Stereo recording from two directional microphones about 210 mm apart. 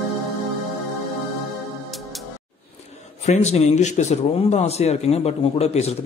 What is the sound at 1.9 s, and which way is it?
Music, centre (ahead or behind).